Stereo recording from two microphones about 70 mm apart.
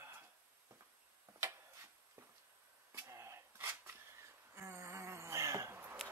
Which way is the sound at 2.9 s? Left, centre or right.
Right.